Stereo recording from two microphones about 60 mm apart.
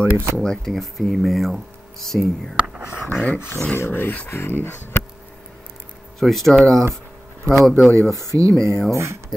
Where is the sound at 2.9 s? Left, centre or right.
Left.